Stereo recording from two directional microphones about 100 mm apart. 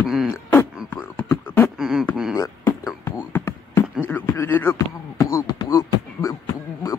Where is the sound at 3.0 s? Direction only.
25° left (ahead or behind).